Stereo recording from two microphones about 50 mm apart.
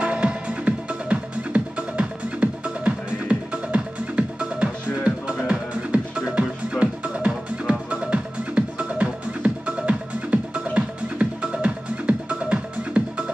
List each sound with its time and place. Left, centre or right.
0.0 s music: right